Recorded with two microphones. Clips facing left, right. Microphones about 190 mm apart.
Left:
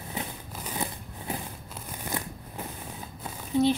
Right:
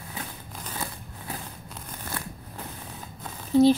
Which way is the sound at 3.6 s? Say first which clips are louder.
Right 6 dB; 35° right (ahead or behind).